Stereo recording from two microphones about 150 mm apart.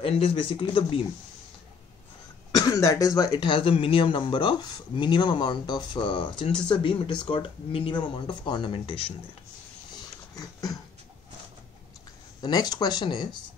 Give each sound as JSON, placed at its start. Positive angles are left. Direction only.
{"t": 0.0, "sound": "speech", "side_deg": 35}
{"t": 2.5, "sound": "speech", "side_deg": 25}
{"t": 9.9, "sound": "dog", "side_deg": 25}
{"t": 12.4, "sound": "speech", "side_deg": 25}